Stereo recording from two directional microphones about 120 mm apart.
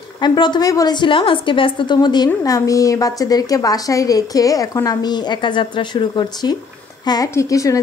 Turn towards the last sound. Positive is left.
turn(degrees=30)  # may be behind; listen again after turning